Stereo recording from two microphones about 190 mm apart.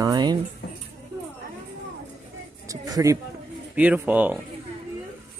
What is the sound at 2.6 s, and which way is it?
Speech, 20° right (ahead or behind).